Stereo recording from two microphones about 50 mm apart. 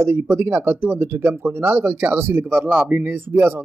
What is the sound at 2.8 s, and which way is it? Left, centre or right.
Speech, right.